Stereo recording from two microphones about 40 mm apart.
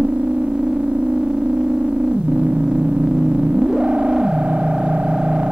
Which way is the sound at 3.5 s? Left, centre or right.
Right.